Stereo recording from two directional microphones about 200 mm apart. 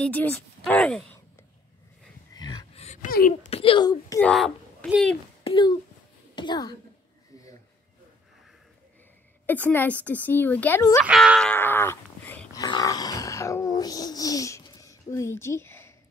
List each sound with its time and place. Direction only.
0.0 s a woman's voice: 5° left (ahead or behind)
2.3 s a sound: 20° left (ahead or behind)
2.8 s a sound: 35° left (ahead or behind)
3.4 s speech: 30° left (ahead or behind)
4.2 s a child's voice: 5° left (ahead or behind)
5.4 s a woman's voice: 25° left (ahead or behind)
9.5 s a woman's voice: 10° left (ahead or behind)
11.1 s a sound: 5° right (ahead or behind)
12.6 s grunt: 20° left (ahead or behind)